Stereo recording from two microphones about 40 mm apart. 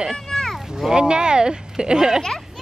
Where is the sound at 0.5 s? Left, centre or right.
Centre.